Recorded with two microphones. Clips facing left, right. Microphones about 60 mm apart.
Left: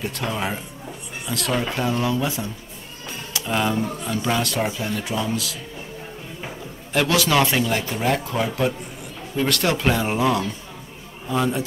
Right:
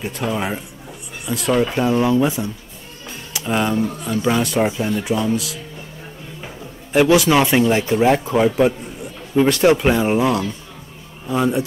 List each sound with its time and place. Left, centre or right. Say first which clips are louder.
0.0 s speech: right 3 dB; centre
3.4 s speech: right 3 dB; centre
6.9 s speech: right 6 dB; centre